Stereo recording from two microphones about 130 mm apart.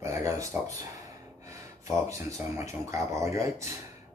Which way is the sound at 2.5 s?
25° right (ahead or behind).